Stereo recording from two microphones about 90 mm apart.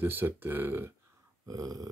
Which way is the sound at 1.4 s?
45° right (ahead or behind).